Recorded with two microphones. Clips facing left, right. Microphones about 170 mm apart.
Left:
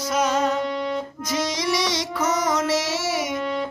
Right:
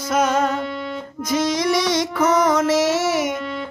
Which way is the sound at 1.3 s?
55° right (ahead or behind).